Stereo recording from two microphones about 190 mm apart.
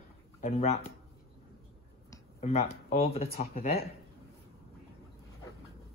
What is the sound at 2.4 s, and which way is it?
Speech, 35° left (ahead or behind).